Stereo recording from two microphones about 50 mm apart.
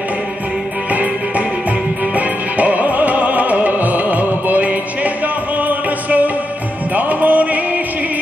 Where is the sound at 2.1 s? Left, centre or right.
Right.